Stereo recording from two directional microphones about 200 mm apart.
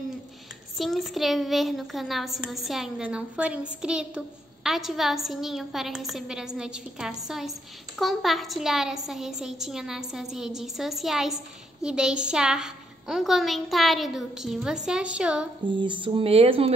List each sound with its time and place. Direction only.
0.7 s a woman's voice: centre (ahead or behind)
15.8 s speech: 25° right (ahead or behind)